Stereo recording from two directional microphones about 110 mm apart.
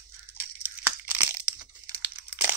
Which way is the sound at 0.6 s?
20° right (ahead or behind).